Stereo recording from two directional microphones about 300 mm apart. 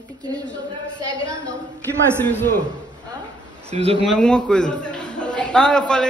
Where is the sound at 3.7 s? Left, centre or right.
Right.